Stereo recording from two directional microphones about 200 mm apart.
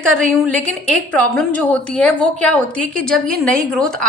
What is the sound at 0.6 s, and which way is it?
A woman's voice, 5° left (ahead or behind).